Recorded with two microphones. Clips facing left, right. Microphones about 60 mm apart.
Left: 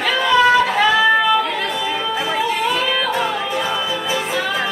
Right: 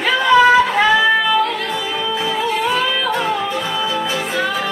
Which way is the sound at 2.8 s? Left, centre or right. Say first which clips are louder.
Right 1 dB; centre.